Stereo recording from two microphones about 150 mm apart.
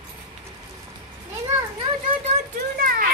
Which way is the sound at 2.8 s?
70° right (ahead or behind).